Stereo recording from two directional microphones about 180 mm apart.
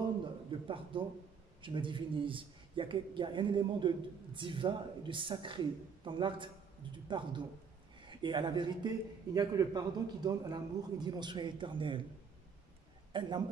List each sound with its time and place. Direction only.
0.5 s a man's voice: 30° right (ahead or behind)
13.1 s a man's voice: 25° right (ahead or behind)